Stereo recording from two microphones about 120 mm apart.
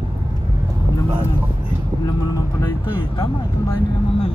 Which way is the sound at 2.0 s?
30° left (ahead or behind).